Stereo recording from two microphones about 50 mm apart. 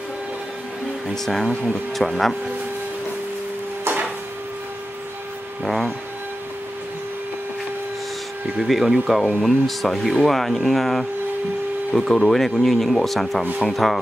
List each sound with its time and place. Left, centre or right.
1.0 s speech: centre
3.8 s a sound: right
5.6 s speech: centre
8.5 s speech: centre